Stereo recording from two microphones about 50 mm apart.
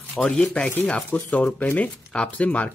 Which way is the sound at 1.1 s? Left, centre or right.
Left.